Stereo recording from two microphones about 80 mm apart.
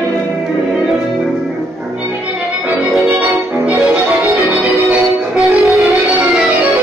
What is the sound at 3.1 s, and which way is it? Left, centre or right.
Music, centre.